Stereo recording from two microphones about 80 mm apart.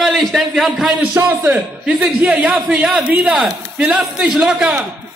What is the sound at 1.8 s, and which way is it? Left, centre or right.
A man's voice, centre.